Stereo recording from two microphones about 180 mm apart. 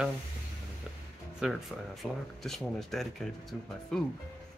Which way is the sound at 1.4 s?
Centre (ahead or behind).